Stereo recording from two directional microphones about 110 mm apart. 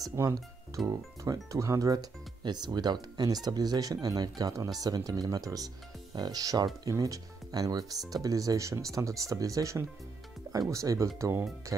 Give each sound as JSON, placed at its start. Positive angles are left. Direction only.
{"t": 0.0, "sound": "speech", "side_deg": -30}